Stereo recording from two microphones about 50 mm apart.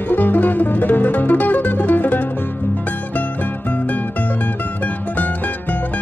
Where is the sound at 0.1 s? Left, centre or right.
Left.